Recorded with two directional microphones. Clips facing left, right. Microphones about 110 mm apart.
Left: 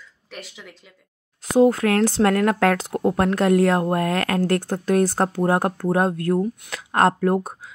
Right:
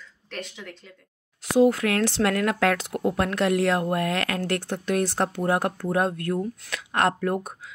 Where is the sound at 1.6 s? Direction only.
40° left (ahead or behind).